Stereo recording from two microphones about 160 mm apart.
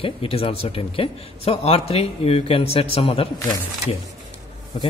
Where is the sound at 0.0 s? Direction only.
35° left (ahead or behind).